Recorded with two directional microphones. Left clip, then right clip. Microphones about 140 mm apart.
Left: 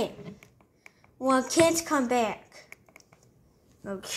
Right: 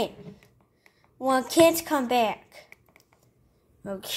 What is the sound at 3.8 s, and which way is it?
Speech, 40° right (ahead or behind).